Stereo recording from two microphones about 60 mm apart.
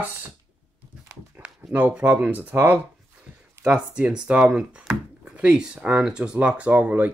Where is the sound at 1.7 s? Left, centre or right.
Right.